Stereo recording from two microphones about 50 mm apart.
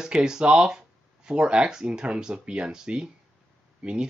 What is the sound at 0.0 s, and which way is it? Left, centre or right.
Speech, centre.